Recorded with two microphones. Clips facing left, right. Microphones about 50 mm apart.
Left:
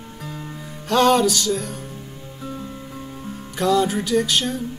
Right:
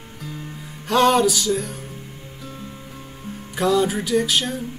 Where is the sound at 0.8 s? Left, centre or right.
Centre.